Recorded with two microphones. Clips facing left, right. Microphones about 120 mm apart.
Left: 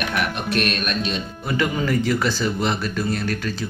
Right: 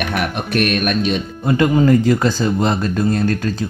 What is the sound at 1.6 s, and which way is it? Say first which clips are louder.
Speech: right 8 dB; 35° right (ahead or behind).